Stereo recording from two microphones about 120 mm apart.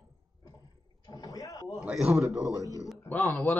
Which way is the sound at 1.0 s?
30° left (ahead or behind).